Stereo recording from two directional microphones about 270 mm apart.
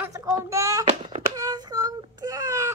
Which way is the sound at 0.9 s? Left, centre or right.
Right.